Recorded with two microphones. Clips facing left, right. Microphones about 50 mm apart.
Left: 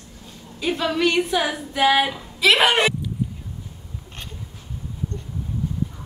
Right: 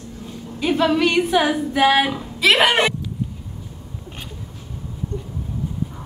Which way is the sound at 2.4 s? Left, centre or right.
Centre.